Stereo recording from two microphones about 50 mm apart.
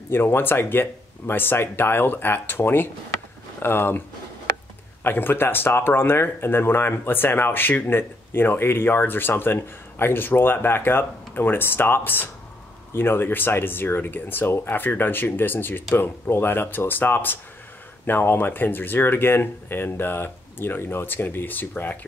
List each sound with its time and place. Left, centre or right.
0.1 s speech: left
5.0 s speech: left